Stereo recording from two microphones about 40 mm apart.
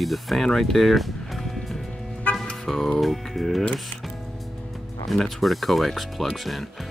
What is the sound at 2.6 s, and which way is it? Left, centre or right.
Music, centre.